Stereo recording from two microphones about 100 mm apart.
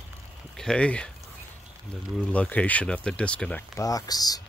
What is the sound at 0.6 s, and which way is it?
Speech, 10° left (ahead or behind).